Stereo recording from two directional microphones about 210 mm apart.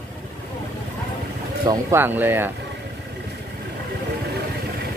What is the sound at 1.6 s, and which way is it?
Speech, 15° right (ahead or behind).